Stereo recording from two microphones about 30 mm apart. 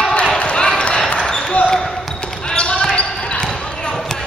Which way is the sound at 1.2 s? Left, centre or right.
Left.